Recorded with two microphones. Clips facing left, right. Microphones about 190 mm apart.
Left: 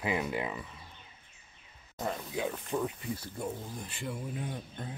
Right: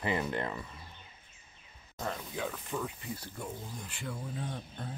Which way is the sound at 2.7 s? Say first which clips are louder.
Left 5 dB; 25° left (ahead or behind).